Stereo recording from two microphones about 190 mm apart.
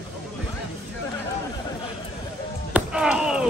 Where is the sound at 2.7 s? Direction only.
5° right (ahead or behind).